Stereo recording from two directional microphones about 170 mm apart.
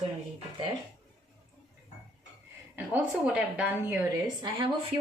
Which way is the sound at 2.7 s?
10° right (ahead or behind).